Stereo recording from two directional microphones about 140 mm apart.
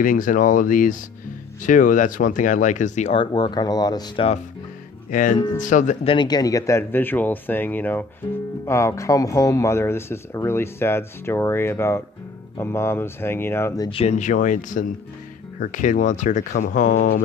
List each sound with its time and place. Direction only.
0.0 s speech: 75° left (ahead or behind); by 3.1 s 60° left (ahead or behind)
3.1 s speech: 35° left (ahead or behind)
5.1 s speech: 75° left (ahead or behind)
5.6 s speech: 65° left (ahead or behind)
6.0 s speech: 30° left (ahead or behind)
13.8 s speech: 45° left (ahead or behind); by 17.2 s 75° left (ahead or behind)